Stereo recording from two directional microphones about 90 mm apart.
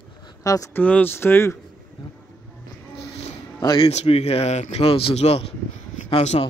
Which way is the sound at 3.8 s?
90° left.